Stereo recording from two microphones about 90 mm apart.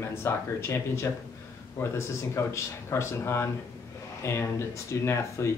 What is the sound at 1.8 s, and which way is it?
Speech, 30° left (ahead or behind).